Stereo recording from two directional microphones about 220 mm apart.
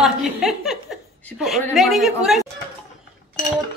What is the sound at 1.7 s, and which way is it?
Speech, centre (ahead or behind).